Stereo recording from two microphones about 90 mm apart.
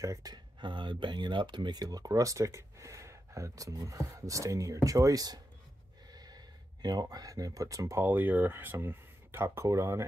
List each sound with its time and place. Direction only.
0.0 s speech: 35° right (ahead or behind)
0.3 s speech: 60° right (ahead or behind); by 8.0 s 40° right (ahead or behind)
8.0 s speech: 20° right (ahead or behind)